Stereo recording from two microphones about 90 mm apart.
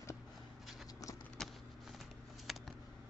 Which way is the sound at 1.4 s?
5° left (ahead or behind).